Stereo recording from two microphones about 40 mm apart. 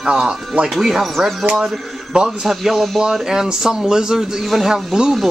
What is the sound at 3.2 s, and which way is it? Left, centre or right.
Speech, centre.